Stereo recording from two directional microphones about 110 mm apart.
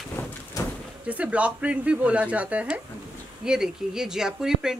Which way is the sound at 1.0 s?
10° right (ahead or behind).